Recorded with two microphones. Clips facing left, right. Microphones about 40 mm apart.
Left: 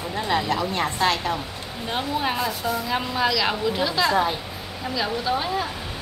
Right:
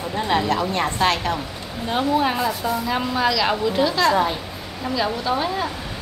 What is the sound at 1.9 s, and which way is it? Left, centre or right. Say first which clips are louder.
Speech: right 5 dB; centre.